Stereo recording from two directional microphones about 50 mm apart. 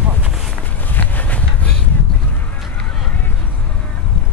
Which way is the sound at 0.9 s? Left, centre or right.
Left.